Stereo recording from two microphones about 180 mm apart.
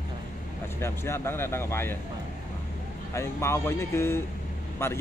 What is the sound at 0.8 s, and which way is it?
A man's voice, 15° left (ahead or behind).